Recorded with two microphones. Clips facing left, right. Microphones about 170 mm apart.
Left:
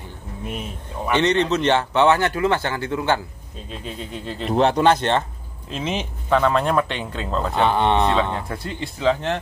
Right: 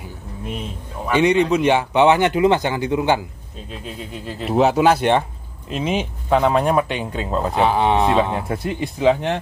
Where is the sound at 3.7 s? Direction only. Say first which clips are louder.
Even; centre (ahead or behind).